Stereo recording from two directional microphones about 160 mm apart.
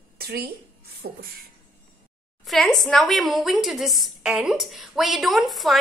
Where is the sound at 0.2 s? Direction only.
75° right (ahead or behind).